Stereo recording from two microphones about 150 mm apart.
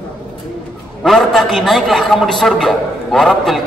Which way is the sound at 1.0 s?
Centre (ahead or behind).